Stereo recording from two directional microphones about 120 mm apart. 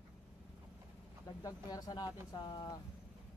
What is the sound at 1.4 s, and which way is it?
Speech, 30° left (ahead or behind).